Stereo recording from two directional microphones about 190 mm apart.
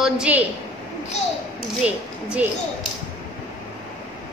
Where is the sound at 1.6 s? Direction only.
5° right (ahead or behind).